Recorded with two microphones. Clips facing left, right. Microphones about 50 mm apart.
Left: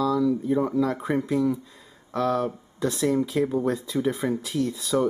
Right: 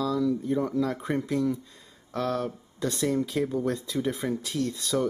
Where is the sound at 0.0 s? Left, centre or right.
Centre.